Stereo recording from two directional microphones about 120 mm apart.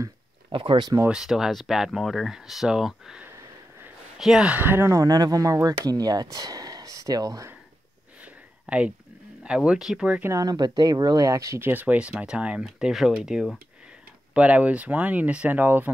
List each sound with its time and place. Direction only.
0.5 s speech: 45° right (ahead or behind)
1.0 s speech: 5° right (ahead or behind); by 5.0 s 20° right (ahead or behind)
5.0 s speech: 30° right (ahead or behind)
8.6 s speech: 10° right (ahead or behind)
10.2 s speech: 30° right (ahead or behind)